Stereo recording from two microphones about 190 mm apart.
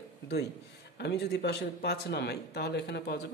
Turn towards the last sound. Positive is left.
turn(degrees=60)  # may be behind; listen again after turning